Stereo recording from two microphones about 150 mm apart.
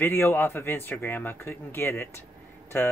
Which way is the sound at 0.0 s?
15° left (ahead or behind).